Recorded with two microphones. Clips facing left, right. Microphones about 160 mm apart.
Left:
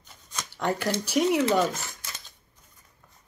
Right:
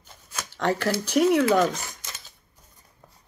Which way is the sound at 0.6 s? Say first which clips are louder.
Right 3 dB; 10° left (ahead or behind).